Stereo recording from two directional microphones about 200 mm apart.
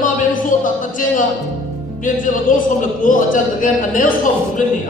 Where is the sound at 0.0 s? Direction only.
40° left (ahead or behind).